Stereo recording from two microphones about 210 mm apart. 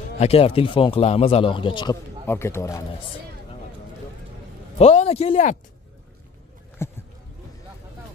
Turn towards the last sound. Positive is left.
turn(degrees=10)  # may be behind; listen again after turning